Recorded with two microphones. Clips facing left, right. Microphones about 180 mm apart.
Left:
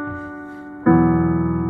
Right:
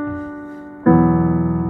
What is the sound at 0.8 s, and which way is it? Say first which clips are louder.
Music: right 1 dB; 35° right (ahead or behind).